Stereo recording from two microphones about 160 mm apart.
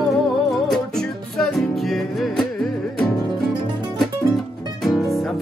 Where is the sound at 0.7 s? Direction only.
Centre (ahead or behind).